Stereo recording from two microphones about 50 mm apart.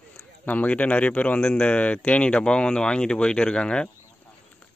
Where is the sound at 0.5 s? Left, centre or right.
Left.